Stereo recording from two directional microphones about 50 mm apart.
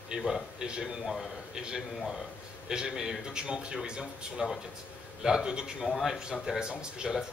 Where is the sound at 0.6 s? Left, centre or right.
Centre.